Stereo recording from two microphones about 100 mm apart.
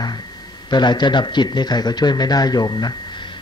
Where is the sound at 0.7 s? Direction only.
50° left (ahead or behind).